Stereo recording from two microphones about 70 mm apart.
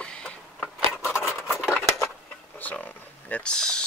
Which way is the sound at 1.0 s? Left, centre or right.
Left.